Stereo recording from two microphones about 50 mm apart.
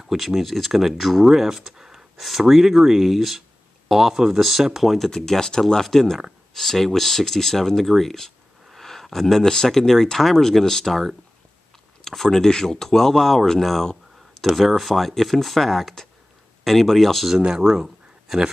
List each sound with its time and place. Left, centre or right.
0.1 s speech: centre
4.9 s speech: centre
17.5 s speech: centre